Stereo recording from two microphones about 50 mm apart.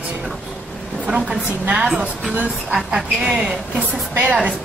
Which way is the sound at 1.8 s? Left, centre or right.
Centre.